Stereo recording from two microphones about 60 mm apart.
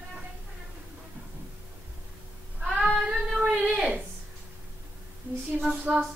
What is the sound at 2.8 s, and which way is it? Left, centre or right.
Child singing, centre.